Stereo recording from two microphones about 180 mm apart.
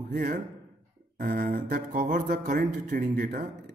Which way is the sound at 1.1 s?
55° right (ahead or behind).